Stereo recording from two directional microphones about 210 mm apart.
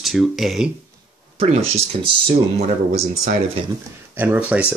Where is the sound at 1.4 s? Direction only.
30° right (ahead or behind).